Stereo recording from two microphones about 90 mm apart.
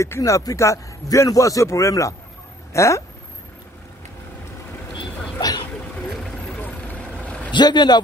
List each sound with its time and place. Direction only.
0.0 s speech: 35° left (ahead or behind)
6.5 s vehicle: 15° left (ahead or behind)
7.5 s speech: 55° left (ahead or behind)